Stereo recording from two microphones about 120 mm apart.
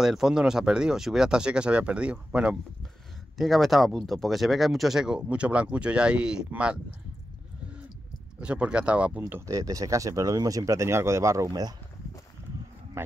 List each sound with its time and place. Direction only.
0.0 s speech: 5° right (ahead or behind)
8.4 s speech: 10° right (ahead or behind)
9.5 s speech: 30° right (ahead or behind)
13.0 s speech: 20° right (ahead or behind)